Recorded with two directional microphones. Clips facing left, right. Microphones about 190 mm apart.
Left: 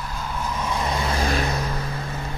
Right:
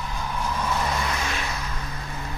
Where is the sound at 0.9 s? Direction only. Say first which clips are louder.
Left 4 dB; 30° left (ahead or behind).